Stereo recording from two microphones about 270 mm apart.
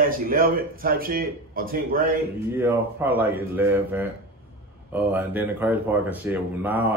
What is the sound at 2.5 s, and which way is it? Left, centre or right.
Speech, centre.